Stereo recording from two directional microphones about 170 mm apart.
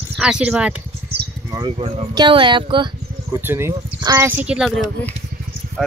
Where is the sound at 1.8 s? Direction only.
35° right (ahead or behind).